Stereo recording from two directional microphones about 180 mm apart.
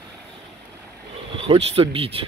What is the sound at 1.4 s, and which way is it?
Speech, 30° right (ahead or behind).